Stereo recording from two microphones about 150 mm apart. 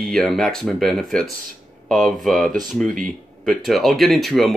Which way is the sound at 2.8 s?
60° right (ahead or behind).